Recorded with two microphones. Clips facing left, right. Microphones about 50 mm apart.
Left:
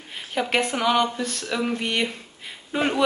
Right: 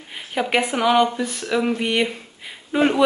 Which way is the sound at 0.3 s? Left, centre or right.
Centre.